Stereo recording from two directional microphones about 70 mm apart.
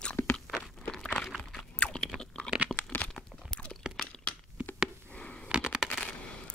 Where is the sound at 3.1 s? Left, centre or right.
Centre.